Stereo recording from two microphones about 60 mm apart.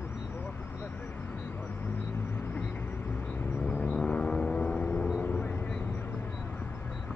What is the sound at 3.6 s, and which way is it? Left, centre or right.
Vehicle, left.